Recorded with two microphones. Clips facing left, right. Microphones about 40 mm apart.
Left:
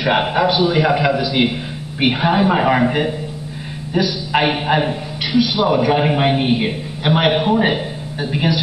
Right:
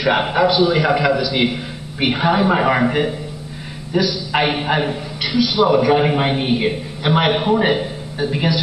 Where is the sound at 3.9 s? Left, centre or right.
Centre.